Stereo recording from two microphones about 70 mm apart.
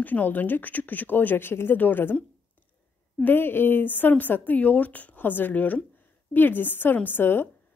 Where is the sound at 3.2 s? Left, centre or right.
Left.